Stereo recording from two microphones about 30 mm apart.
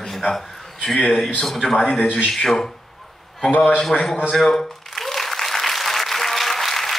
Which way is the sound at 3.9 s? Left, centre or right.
Left.